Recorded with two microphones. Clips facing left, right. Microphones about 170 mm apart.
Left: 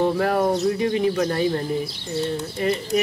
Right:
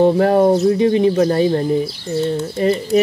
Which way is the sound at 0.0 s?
30° right (ahead or behind).